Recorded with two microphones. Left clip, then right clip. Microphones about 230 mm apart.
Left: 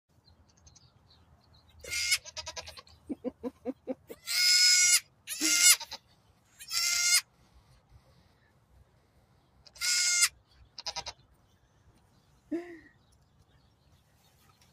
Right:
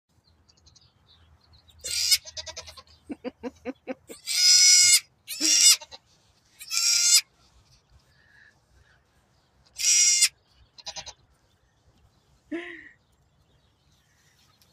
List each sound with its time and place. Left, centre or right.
1.9 s sheep: centre
2.3 s goat: centre
5.4 s goat: left
6.7 s goat: centre
9.8 s sheep: centre
12.4 s a sound: centre